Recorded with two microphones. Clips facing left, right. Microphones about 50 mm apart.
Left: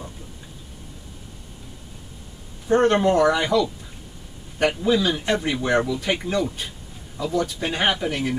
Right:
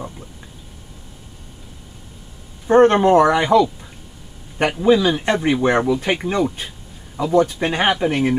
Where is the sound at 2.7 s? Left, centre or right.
Right.